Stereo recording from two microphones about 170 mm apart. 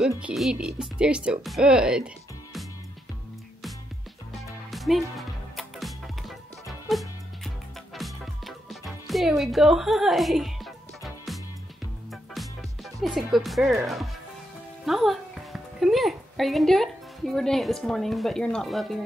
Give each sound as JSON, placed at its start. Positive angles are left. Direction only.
{"t": 0.2, "sound": "speech", "side_deg": 0}
{"t": 4.6, "sound": "music", "side_deg": 0}
{"t": 13.3, "sound": "a woman's voice", "side_deg": 0}